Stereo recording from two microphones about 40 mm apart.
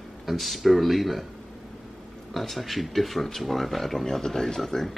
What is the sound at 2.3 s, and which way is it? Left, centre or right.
Speech, centre.